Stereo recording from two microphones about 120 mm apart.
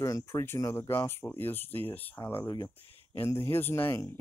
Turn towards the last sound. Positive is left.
turn(degrees=20)  # may be behind; listen again after turning